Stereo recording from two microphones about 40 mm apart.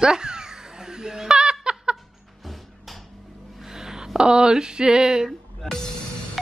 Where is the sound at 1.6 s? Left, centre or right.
Right.